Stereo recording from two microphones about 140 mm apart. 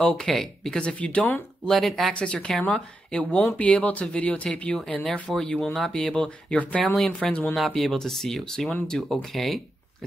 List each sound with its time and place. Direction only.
0.0 s speech: 5° left (ahead or behind)